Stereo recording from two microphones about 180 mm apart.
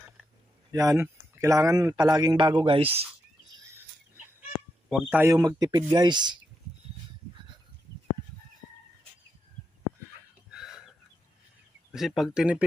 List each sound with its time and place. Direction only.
0.7 s speech: 20° right (ahead or behind)
4.8 s a sound: centre (ahead or behind)
5.1 s speech: 10° right (ahead or behind)
10.5 s chicken: 5° right (ahead or behind)
11.9 s speech: centre (ahead or behind)